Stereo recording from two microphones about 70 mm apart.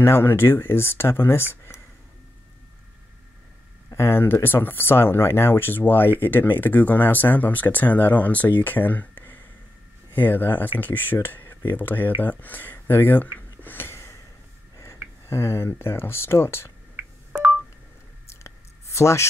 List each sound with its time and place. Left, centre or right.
0.0 s speech: left
3.9 s speech: left
13.6 s a sound: left
15.2 s speech: left
18.2 s clicking: left